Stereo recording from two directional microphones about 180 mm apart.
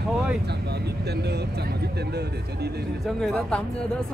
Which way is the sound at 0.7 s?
65° right (ahead or behind).